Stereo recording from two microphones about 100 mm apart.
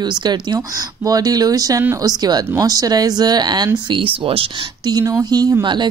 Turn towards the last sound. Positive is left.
turn(degrees=-45)  # may be behind; listen again after turning